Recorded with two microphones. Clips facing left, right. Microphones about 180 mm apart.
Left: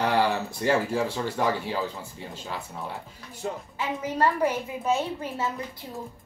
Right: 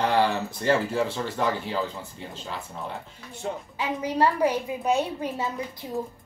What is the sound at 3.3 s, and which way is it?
A woman's voice, 20° right (ahead or behind).